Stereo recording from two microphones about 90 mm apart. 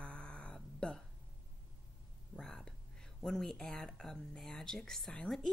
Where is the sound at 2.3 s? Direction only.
10° left (ahead or behind).